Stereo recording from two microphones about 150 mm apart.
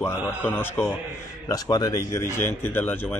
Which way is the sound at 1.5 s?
25° left (ahead or behind).